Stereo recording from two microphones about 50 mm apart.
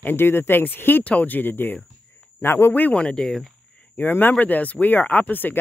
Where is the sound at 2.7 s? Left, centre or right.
Left.